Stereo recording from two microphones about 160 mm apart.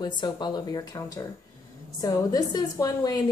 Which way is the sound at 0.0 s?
25° left (ahead or behind).